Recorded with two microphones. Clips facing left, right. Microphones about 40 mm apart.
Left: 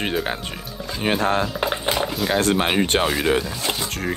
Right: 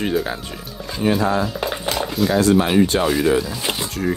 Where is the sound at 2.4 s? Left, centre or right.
Left.